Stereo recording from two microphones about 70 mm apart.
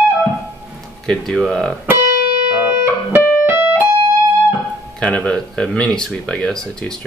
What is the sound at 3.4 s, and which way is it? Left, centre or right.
Keyboard, right.